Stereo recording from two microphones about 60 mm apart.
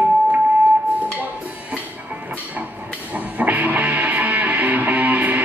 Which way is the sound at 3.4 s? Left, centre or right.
Right.